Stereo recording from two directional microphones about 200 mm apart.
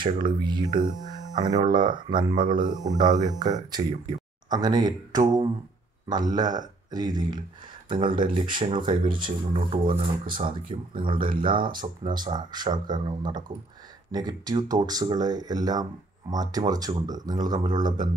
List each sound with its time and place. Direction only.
0.0 s speech: 25° right (ahead or behind)
10.2 s speech: 45° right (ahead or behind)
11.0 s speech: 25° right (ahead or behind)